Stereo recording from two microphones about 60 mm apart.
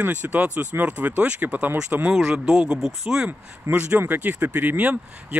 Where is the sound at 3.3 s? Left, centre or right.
Right.